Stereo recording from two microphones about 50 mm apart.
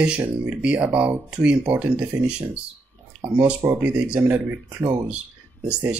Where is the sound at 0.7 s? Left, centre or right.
Right.